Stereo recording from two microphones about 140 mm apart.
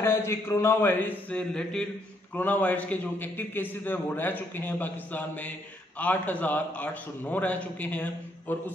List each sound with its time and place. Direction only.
0.0 s a man's voice: 20° left (ahead or behind)